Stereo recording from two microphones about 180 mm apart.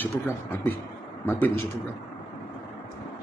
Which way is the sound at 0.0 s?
10° left (ahead or behind).